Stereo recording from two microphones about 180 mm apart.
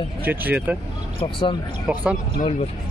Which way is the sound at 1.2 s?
25° left (ahead or behind).